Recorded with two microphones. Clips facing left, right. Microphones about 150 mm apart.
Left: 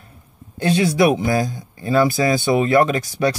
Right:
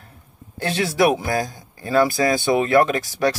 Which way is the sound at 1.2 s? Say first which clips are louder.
Left 4 dB; 20° left (ahead or behind).